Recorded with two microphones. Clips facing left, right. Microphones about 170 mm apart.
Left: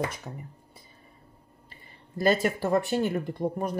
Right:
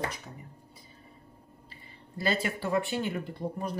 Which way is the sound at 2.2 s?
45° left (ahead or behind).